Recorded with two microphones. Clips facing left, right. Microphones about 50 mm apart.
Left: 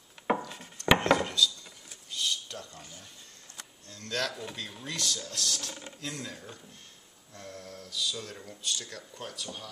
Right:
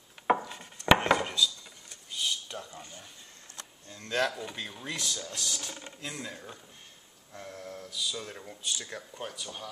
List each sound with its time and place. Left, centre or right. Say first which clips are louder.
0.3 s wood: right 3 dB; centre
2.0 s a sound: even; centre
3.9 s speech: right 4 dB; centre